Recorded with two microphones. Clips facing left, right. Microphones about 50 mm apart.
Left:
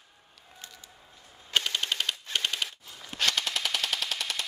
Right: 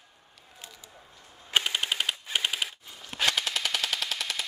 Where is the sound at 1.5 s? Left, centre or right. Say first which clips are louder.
Right 1 dB; centre.